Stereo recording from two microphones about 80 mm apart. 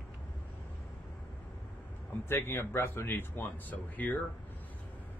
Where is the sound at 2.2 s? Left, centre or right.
Left.